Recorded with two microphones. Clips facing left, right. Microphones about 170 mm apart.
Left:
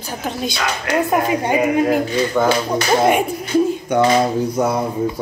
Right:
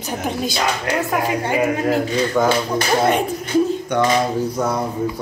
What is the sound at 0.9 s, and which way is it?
Speech, 20° left (ahead or behind).